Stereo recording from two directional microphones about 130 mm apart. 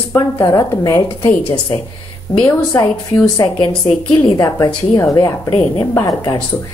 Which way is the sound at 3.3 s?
35° left (ahead or behind).